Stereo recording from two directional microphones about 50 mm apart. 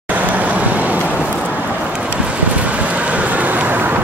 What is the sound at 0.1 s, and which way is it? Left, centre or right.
Vehicle, right.